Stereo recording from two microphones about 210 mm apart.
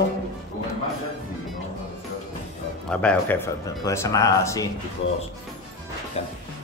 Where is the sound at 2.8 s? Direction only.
5° left (ahead or behind).